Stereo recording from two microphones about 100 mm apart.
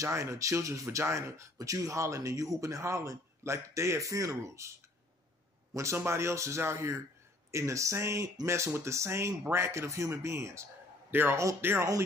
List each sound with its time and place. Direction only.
0.0 s a man's voice: 30° right (ahead or behind)